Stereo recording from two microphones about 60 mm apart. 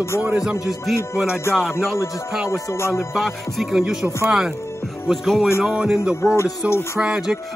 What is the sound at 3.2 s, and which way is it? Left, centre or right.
Music, centre.